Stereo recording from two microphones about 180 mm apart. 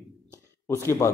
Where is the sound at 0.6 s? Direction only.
15° left (ahead or behind).